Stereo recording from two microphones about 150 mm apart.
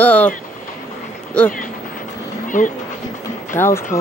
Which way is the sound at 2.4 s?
60° left (ahead or behind).